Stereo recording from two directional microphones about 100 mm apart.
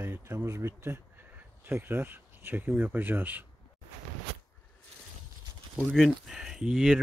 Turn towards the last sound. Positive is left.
turn(degrees=-10)  # may be behind; listen again after turning